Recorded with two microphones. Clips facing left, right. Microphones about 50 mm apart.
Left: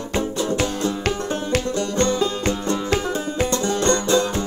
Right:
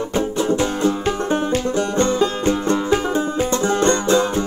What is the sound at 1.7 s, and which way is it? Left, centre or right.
Music, right.